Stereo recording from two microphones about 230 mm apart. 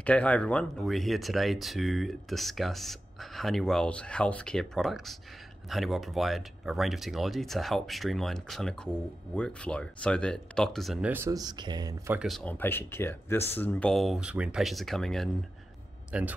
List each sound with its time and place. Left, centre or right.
0.0 s speech: centre
12.2 s a man's voice: centre